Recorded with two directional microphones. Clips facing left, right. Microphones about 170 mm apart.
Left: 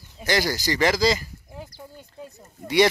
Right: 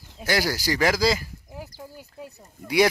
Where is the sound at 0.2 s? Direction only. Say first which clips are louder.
Left 1 dB; 5° right (ahead or behind).